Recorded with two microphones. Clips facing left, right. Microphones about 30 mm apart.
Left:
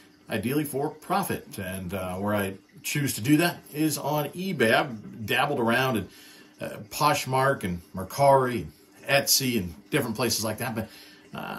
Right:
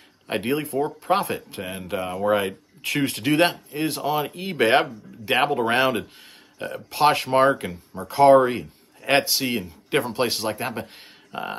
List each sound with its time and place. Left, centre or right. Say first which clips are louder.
0.3 s speech: right 3 dB; right
1.1 s speech: right 5 dB; right
8.2 s speech: right 6 dB; right
9.0 s a man's voice: right 3 dB; right
11.3 s speech: right 6 dB; right